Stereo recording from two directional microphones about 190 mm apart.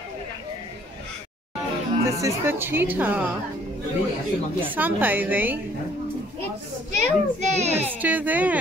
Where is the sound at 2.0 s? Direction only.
15° right (ahead or behind).